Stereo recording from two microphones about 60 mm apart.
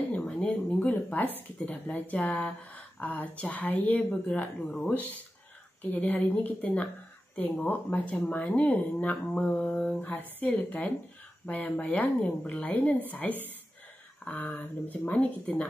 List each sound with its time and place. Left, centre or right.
0.1 s a sound: left
1.7 s speech: left
4.3 s speech: centre
5.8 s speech: left
13.3 s speech: right
14.2 s speech: left
15.5 s speech: centre